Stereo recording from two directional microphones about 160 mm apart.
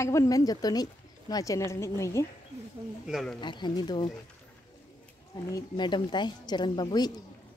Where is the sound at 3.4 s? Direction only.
30° left (ahead or behind).